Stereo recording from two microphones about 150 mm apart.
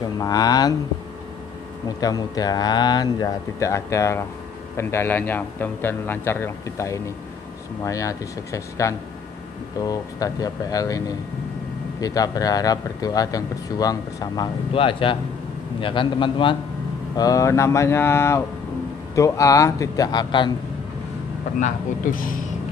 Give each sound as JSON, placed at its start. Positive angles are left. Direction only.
{"t": 0.0, "sound": "speech", "side_deg": 25}
{"t": 2.0, "sound": "a man's voice", "side_deg": 25}
{"t": 17.2, "sound": "a man's voice", "side_deg": 20}
{"t": 21.5, "sound": "speech", "side_deg": 60}